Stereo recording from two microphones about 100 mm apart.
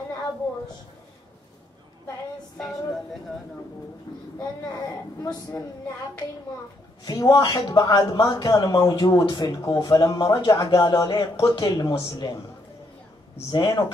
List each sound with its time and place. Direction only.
4.1 s speech: 40° left (ahead or behind)
7.1 s speech: 40° left (ahead or behind)
13.5 s speech: 45° left (ahead or behind)